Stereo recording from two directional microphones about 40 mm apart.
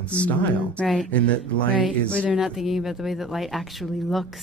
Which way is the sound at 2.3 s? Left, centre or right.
Centre.